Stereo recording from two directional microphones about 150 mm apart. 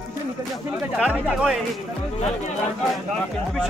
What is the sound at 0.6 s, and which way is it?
Speech, 5° right (ahead or behind).